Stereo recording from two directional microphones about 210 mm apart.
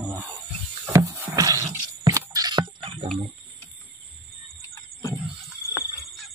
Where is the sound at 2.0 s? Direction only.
15° right (ahead or behind).